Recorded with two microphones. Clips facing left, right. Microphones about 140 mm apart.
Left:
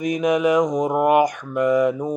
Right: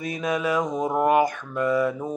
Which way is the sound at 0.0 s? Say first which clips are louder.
Left 7 dB; 15° left (ahead or behind).